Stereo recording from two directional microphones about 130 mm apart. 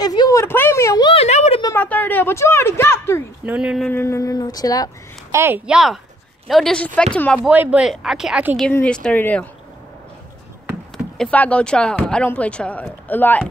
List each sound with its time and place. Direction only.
0.0 s a sound: 30° left (ahead or behind)
1.1 s a sound: 55° left (ahead or behind)
1.6 s a sound: 20° left (ahead or behind)
1.9 s a woman's voice: 15° left (ahead or behind)
3.4 s speech: 10° right (ahead or behind)
3.9 s a woman's voice: 20° left (ahead or behind)
5.3 s a woman's voice: 20° right (ahead or behind)
5.7 s speech: 5° right (ahead or behind)
7.3 s speech: 5° right (ahead or behind)
8.8 s speech: 5° left (ahead or behind)
11.1 s speech: 10° left (ahead or behind)